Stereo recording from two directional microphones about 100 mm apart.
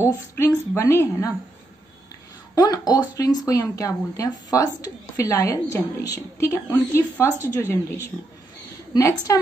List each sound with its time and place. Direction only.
0.4 s a woman's voice: 30° left (ahead or behind)
2.5 s a woman's voice: 40° left (ahead or behind)